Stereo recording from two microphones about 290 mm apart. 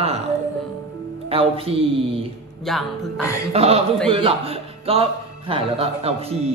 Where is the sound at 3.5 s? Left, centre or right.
Right.